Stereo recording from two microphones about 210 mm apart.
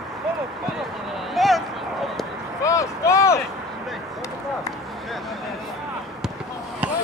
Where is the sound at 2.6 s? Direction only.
15° left (ahead or behind).